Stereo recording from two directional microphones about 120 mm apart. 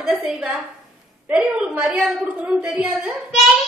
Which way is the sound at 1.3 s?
10° right (ahead or behind).